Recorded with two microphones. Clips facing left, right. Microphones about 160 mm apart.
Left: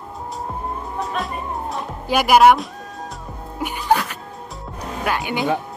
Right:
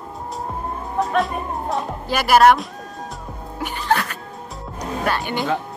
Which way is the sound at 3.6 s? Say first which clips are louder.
Left 2 dB; 10° left (ahead or behind).